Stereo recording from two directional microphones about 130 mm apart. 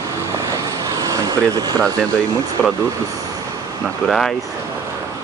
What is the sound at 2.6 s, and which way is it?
Speech, 5° left (ahead or behind).